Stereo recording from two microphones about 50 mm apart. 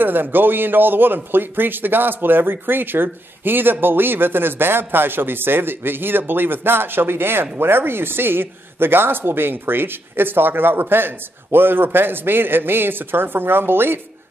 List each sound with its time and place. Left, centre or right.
0.0 s a man's voice: right